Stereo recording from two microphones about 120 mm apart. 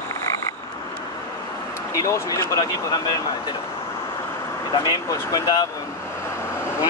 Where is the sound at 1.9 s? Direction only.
25° left (ahead or behind).